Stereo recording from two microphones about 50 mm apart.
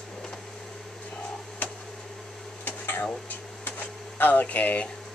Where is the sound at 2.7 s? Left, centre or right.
Left.